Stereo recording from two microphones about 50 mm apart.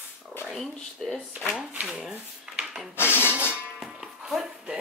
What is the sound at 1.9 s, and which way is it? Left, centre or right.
Dishes, centre.